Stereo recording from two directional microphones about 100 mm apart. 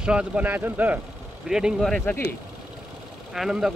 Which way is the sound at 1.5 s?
5° right (ahead or behind).